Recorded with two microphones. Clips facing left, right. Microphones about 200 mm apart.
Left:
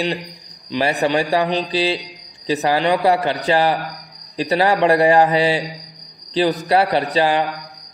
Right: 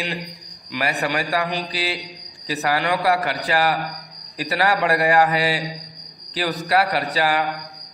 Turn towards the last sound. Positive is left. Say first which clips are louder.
# left 4 dB
turn(degrees=25)  # may be behind; listen again after turning